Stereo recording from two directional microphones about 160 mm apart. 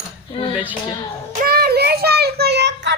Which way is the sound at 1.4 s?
70° right (ahead or behind).